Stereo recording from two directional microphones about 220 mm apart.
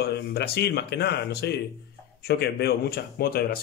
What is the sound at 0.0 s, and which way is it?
A man's voice, 45° left (ahead or behind).